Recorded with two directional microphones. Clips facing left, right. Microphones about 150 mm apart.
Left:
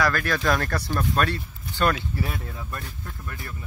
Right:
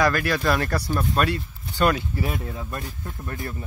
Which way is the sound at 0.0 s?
15° right (ahead or behind).